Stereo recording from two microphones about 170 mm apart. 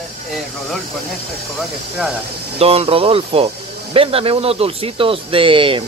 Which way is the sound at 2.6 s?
35° right (ahead or behind).